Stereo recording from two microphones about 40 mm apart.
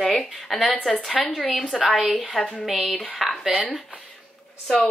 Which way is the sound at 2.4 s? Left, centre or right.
Left.